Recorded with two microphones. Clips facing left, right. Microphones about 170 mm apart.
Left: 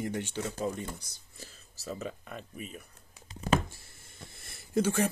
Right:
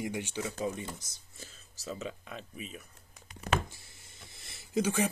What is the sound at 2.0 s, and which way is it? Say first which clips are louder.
Speech: left 1 dB; 50° left (ahead or behind).